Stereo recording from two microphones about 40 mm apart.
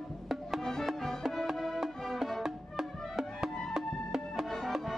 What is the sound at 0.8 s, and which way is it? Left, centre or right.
Music, centre.